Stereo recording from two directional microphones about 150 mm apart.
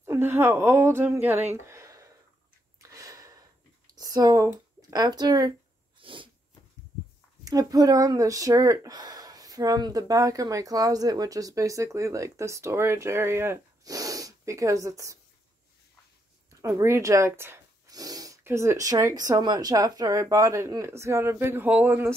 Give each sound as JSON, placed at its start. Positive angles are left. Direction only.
{"t": 0.0, "sound": "speech", "side_deg": -15}
{"t": 2.8, "sound": "gasp", "side_deg": -20}
{"t": 4.0, "sound": "speech", "side_deg": -25}
{"t": 5.9, "sound": "sneeze", "side_deg": -35}
{"t": 7.4, "sound": "speech", "side_deg": -25}
{"t": 16.6, "sound": "speech", "side_deg": -20}